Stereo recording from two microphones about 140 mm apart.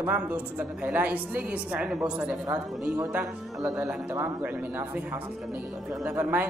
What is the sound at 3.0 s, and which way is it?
A man's voice, 20° right (ahead or behind).